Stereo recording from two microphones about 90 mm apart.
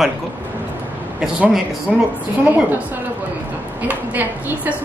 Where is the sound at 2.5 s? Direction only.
20° right (ahead or behind).